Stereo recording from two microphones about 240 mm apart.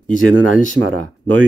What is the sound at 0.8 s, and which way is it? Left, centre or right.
Speech, right.